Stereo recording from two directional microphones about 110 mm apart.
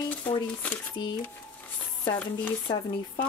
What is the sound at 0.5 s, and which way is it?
Speech, 15° left (ahead or behind).